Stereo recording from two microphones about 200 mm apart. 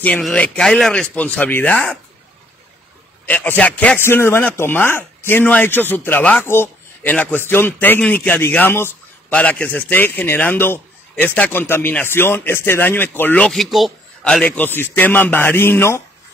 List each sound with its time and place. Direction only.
0.0 s speech: 5° left (ahead or behind)
3.3 s a man's voice: 10° left (ahead or behind)